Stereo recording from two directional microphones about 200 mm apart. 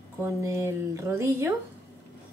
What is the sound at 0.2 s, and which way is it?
A woman's voice, 15° right (ahead or behind).